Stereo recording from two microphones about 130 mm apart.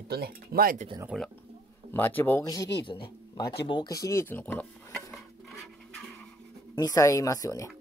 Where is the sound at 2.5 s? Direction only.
25° left (ahead or behind).